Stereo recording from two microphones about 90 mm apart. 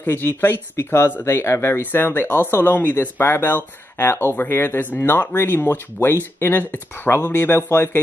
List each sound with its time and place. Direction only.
0.0 s speech: 25° left (ahead or behind)